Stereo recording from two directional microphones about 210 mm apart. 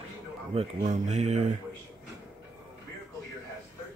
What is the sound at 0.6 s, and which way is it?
Speech, 35° right (ahead or behind).